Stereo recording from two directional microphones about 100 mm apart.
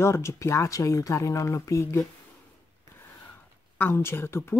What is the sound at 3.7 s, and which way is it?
Speech, 20° left (ahead or behind).